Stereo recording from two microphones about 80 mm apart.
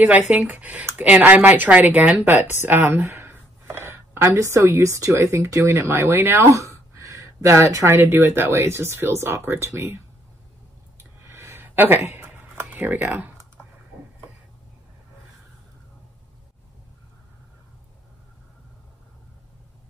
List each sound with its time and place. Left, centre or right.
0.0 s speech: centre
3.0 s speech: right
3.3 s chopping: right
4.3 s speech: right
11.0 s a sound: right
12.7 s speech: right